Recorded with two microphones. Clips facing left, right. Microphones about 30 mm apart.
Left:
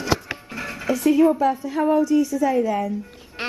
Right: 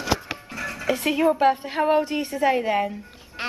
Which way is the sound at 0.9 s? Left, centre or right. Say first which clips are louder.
Left 5 dB; right.